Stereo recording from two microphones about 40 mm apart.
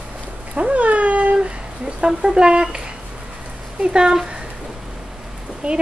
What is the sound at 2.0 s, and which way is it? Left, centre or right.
Speech, right.